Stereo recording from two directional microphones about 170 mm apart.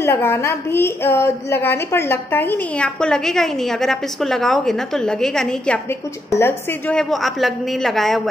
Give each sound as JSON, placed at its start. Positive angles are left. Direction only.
{"t": 0.0, "sound": "a woman's voice", "side_deg": 15}
{"t": 5.9, "sound": "a woman's voice", "side_deg": 15}